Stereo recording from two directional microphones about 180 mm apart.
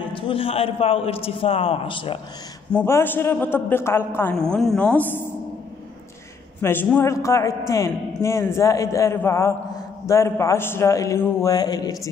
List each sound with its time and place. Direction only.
0.1 s a man's voice: 30° left (ahead or behind)
2.7 s a man's voice: 10° left (ahead or behind)
6.6 s a man's voice: 10° left (ahead or behind)